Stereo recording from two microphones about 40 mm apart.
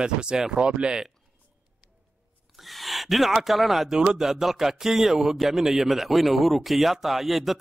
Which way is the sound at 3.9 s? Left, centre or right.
Centre.